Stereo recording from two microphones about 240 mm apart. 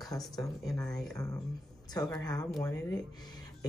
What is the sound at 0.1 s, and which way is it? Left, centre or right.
Speech, centre.